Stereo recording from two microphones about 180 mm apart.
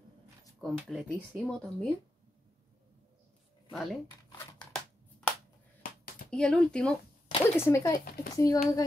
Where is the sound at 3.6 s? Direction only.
Centre (ahead or behind).